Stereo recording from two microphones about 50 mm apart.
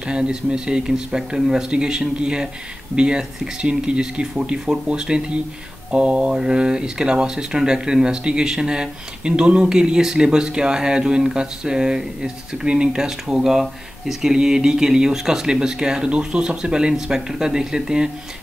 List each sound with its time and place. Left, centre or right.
0.0 s speech: centre